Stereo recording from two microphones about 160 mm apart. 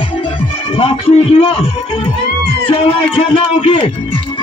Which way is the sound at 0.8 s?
35° left (ahead or behind).